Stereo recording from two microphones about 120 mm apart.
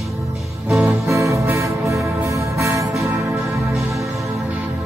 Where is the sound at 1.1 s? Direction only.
25° right (ahead or behind).